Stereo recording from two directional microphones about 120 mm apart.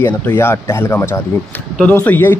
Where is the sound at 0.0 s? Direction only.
15° left (ahead or behind).